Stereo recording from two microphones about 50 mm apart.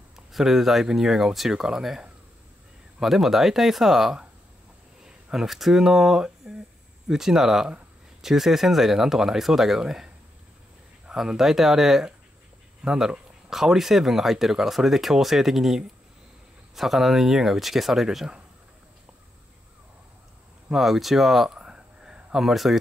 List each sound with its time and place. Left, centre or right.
0.1 s speech: centre
20.7 s speech: centre
21.5 s a sound: centre
22.3 s speech: centre